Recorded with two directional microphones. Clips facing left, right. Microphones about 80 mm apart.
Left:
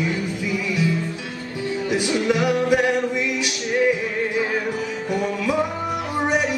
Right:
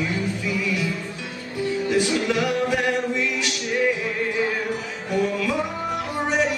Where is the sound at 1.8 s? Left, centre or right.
Centre.